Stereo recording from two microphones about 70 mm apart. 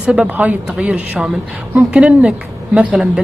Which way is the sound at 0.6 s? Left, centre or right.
Centre.